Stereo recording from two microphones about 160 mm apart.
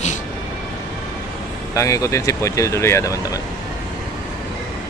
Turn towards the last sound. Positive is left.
turn(degrees=20)  # may be behind; listen again after turning